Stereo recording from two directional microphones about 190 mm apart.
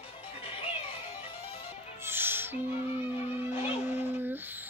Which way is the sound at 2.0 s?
10° right (ahead or behind).